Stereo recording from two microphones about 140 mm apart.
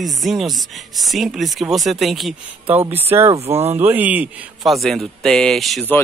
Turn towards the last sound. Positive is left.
turn(degrees=0)  # may be behind; listen again after turning